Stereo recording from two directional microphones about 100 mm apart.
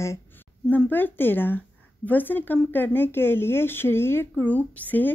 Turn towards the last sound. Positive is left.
turn(degrees=15)  # may be behind; listen again after turning